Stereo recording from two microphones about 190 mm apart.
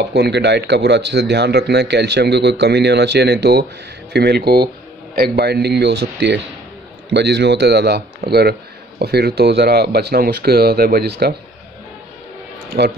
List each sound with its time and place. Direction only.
0.1 s a man's voice: 60° right (ahead or behind)
12.7 s speech: 45° right (ahead or behind)